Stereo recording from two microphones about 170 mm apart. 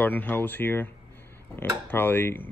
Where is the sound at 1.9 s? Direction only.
10° left (ahead or behind).